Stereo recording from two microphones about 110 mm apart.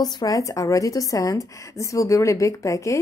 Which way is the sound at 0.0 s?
35° left (ahead or behind).